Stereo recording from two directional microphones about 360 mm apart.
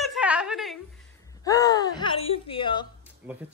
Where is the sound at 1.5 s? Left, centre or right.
Centre.